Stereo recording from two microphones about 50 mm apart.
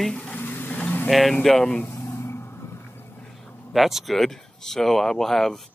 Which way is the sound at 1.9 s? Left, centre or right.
Left.